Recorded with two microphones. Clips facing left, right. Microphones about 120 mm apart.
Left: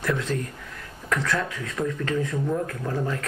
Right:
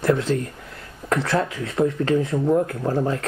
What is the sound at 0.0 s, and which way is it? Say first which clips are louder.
Speech: right 6 dB; 30° right (ahead or behind).